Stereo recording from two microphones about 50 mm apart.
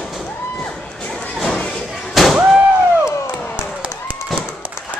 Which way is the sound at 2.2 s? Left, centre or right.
Centre.